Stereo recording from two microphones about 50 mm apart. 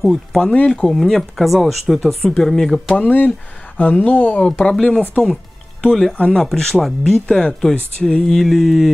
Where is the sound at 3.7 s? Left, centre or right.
Left.